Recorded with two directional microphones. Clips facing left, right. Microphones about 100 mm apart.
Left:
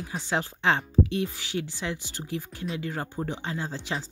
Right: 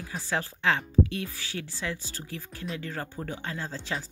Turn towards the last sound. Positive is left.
turn(degrees=15)  # may be behind; listen again after turning